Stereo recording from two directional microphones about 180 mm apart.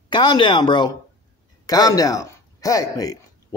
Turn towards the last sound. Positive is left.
turn(degrees=20)  # may be behind; listen again after turning